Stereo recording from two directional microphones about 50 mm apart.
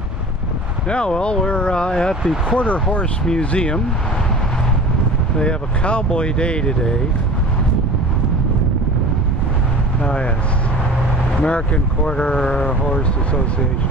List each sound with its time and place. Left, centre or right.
0.8 s speech: left
5.4 s speech: left
11.3 s speech: left